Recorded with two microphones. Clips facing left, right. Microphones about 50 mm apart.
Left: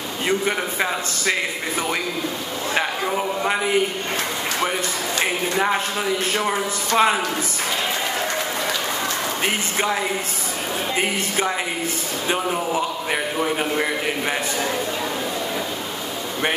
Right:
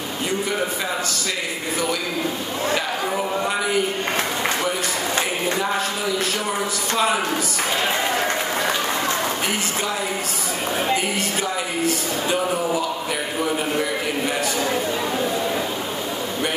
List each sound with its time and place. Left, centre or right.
6.3 s speech: left